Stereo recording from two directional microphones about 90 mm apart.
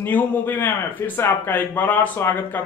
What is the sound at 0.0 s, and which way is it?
Speech, 20° left (ahead or behind).